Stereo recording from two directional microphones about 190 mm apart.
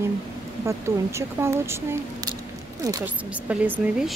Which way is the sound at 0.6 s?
15° right (ahead or behind).